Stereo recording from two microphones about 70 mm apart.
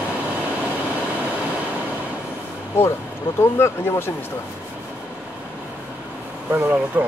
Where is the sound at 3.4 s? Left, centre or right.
Left.